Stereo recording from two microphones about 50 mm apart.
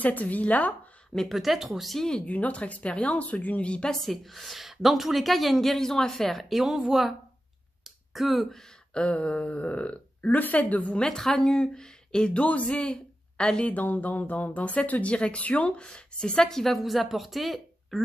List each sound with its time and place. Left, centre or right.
0.0 s speech: left
1.3 s a woman's voice: centre
2.2 s speech: left
3.9 s a woman's voice: centre
6.6 s speech: centre
7.8 s a sound: centre
8.5 s a sound: centre
9.0 s speech: left
11.0 s speech: centre
12.4 s speech: left
13.7 s speech: left; by 16.7 s centre
16.7 s a woman's voice: centre